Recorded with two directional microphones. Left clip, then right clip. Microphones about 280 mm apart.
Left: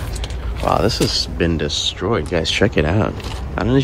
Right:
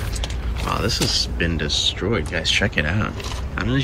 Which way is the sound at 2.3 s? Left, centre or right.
Centre.